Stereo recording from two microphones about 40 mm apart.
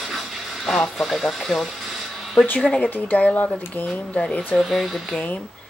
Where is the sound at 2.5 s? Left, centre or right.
Left.